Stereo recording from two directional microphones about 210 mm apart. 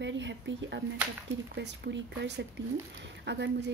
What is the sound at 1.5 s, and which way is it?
Speech, 55° right (ahead or behind).